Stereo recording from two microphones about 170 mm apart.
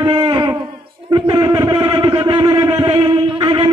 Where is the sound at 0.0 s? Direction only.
25° right (ahead or behind).